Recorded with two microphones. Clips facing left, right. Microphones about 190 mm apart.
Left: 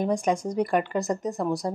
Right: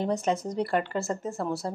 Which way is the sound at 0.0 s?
15° left (ahead or behind).